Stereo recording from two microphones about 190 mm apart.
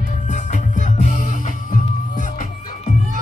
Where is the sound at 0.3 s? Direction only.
40° left (ahead or behind).